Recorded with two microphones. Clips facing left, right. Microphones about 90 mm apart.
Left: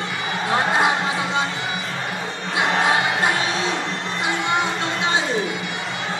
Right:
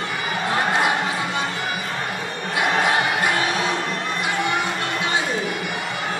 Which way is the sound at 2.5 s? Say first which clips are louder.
Left 1 dB; 25° left (ahead or behind).